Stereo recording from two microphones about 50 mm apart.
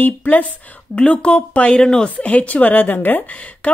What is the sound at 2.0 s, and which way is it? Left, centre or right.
A woman's voice, left.